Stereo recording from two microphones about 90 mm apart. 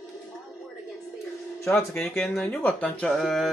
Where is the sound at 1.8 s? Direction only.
25° left (ahead or behind).